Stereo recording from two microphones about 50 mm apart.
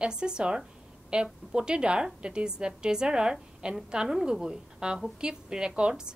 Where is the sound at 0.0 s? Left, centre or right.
Centre.